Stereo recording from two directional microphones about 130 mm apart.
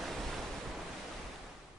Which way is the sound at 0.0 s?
Centre (ahead or behind).